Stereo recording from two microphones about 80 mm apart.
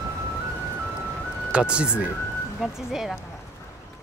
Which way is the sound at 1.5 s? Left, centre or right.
Centre.